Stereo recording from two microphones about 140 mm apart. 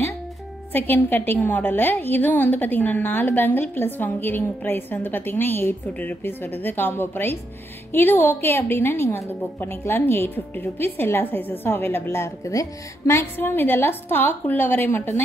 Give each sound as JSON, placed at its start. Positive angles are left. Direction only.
{"t": 0.7, "sound": "a woman's voice", "side_deg": 15}